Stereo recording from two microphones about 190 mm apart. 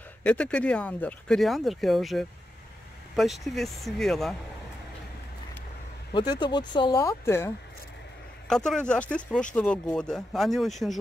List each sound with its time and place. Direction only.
0.2 s speech: 5° left (ahead or behind)
6.1 s speech: 20° left (ahead or behind); by 11.0 s centre (ahead or behind)